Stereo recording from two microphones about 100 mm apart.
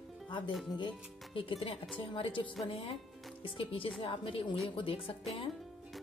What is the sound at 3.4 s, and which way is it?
Speech, 65° left (ahead or behind).